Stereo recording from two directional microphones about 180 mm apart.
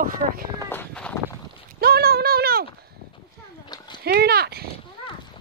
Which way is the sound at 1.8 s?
60° right (ahead or behind).